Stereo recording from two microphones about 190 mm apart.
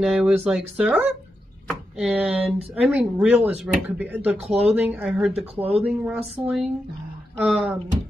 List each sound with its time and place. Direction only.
0.0 s speech: centre (ahead or behind)
5.6 s speech: 30° right (ahead or behind)
5.9 s speech: 5° right (ahead or behind)